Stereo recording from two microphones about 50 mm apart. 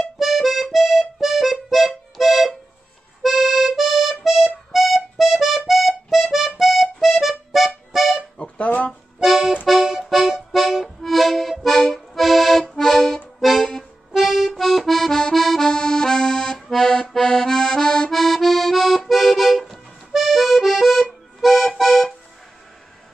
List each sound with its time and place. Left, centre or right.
0.0 s music: centre
8.4 s music: left
9.2 s accordion: centre
10.1 s music: centre
14.2 s accordion: centre